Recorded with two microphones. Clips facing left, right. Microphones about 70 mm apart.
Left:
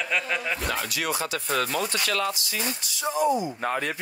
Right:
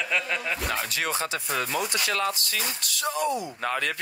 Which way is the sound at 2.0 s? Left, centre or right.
Right.